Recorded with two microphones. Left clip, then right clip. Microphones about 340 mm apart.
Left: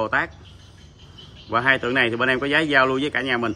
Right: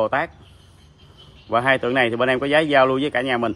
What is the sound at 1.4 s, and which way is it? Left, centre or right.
Speech, centre.